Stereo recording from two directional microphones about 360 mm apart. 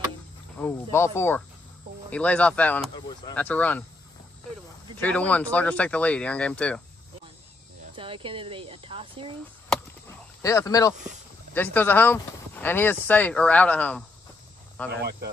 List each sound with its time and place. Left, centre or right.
0.6 s speech: centre
5.0 s speech: centre
7.9 s speech: centre
9.7 s chop: centre
11.5 s speech: centre
14.9 s speech: right